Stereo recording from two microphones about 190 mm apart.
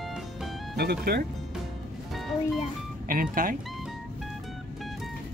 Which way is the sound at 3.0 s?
45° right (ahead or behind).